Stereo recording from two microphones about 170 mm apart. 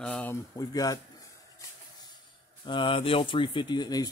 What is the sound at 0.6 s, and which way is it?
Speech, 20° left (ahead or behind).